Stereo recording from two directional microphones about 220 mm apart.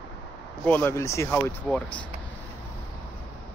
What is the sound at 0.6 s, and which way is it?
Speech, 10° left (ahead or behind).